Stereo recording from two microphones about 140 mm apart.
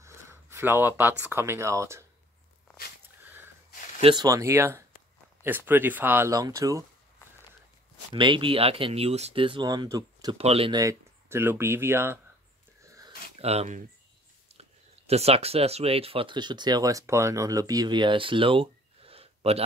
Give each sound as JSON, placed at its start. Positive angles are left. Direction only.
{"t": 0.0, "sound": "speech", "side_deg": -20}
{"t": 4.0, "sound": "speech", "side_deg": -30}
{"t": 8.1, "sound": "speech", "side_deg": -35}
{"t": 9.7, "sound": "speech", "side_deg": -25}
{"t": 10.3, "sound": "speech", "side_deg": -45}
{"t": 10.7, "sound": "speech", "side_deg": -25}
{"t": 12.8, "sound": "a sound", "side_deg": -25}
{"t": 13.4, "sound": "speech", "side_deg": -50}